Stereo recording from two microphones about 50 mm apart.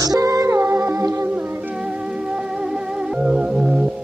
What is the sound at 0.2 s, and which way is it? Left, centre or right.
Music, right.